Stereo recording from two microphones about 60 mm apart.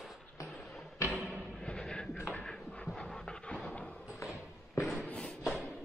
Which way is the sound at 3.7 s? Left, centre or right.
Centre.